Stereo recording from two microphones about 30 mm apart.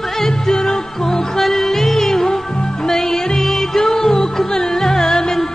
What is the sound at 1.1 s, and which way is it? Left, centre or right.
Music, centre.